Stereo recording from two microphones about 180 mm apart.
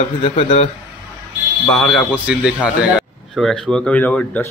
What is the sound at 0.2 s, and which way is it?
Speech, 30° left (ahead or behind).